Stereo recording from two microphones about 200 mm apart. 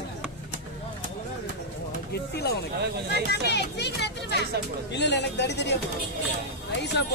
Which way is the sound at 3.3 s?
55° left (ahead or behind).